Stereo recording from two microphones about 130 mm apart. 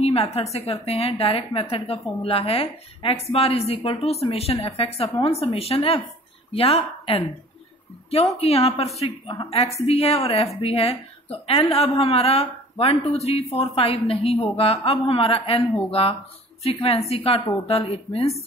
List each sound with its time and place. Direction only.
0.0 s a woman's voice: 50° left (ahead or behind)
8.4 s a woman's voice: 50° left (ahead or behind)